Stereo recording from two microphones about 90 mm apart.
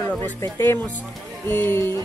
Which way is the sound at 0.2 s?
25° left (ahead or behind).